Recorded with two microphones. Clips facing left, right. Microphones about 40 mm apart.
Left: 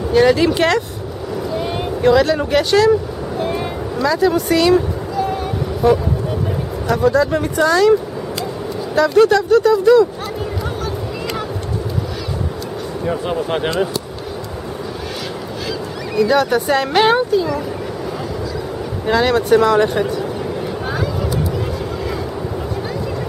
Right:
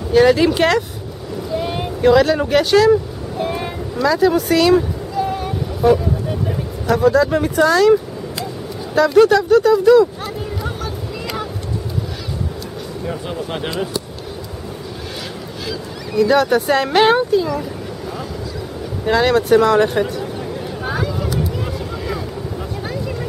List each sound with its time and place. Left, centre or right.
0.1 s speech: centre
1.5 s vehicle: centre
6.9 s speech: centre
13.0 s speech: centre
16.2 s speech: centre
19.0 s speech: centre
20.8 s a sound: centre